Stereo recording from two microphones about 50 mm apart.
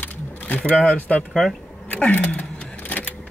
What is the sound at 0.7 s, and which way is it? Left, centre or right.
Speech, left.